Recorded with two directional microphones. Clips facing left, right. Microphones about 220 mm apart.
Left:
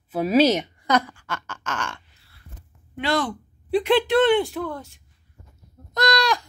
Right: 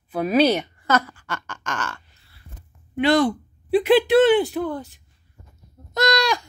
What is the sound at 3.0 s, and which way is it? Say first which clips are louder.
Speech: right 7 dB; 15° right (ahead or behind).